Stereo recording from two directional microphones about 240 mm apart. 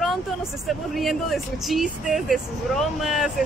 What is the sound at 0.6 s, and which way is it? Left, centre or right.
Speech, centre.